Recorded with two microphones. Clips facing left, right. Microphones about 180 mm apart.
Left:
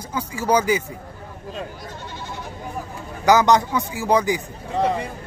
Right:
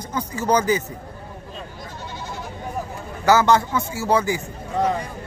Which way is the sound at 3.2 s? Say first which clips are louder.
Left 1 dB; 15° left (ahead or behind).